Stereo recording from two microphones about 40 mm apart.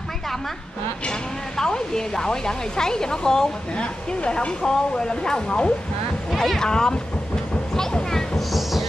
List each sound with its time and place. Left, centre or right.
1.6 s speech: centre
3.8 s speech: left
6.3 s speech: centre
6.6 s speech: centre
8.4 s music: centre